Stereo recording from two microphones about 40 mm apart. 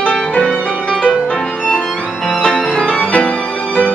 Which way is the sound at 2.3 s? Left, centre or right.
Centre.